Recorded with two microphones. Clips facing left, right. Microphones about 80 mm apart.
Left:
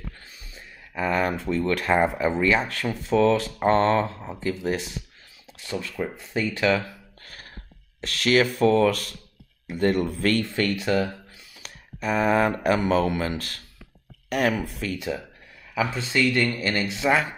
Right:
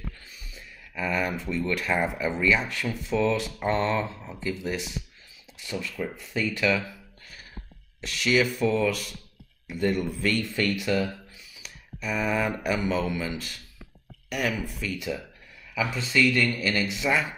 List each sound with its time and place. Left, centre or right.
0.6 s speech: left
6.0 s speech: left
7.2 s music: left
8.0 s a man's voice: left
10.1 s a man's voice: left
10.4 s speech: left
11.5 s a sound: left
12.6 s a man's voice: left
15.0 s speech: left